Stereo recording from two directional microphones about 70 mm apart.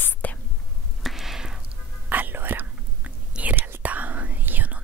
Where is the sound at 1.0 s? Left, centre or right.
Centre.